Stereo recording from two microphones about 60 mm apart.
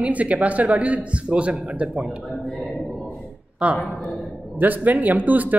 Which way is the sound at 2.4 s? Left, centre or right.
Centre.